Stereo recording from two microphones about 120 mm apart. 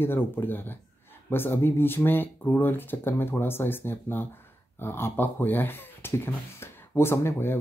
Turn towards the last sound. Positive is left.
turn(degrees=20)  # may be behind; listen again after turning